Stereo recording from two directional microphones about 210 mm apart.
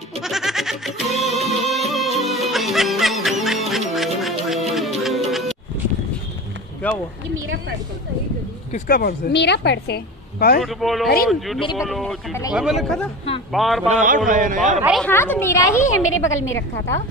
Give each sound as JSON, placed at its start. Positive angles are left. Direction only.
{"t": 0.2, "sound": "music", "side_deg": 0}
{"t": 6.8, "sound": "a woman's voice", "side_deg": 5}
{"t": 8.7, "sound": "a woman's voice", "side_deg": 45}
{"t": 10.6, "sound": "speech", "side_deg": 0}
{"t": 12.3, "sound": "a woman's voice", "side_deg": 15}
{"t": 12.5, "sound": "speech", "side_deg": 0}
{"t": 13.8, "sound": "a man's voice", "side_deg": -35}
{"t": 14.8, "sound": "speech", "side_deg": 0}
{"t": 15.0, "sound": "a woman's voice", "side_deg": 10}
{"t": 16.0, "sound": "a woman's voice", "side_deg": 70}